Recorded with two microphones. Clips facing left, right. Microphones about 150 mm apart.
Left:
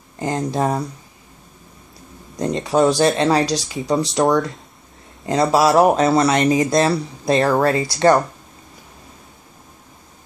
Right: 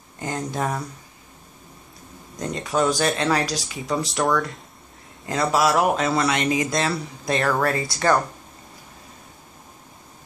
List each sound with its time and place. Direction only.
0.2 s speech: 30° left (ahead or behind)
2.3 s speech: 30° left (ahead or behind)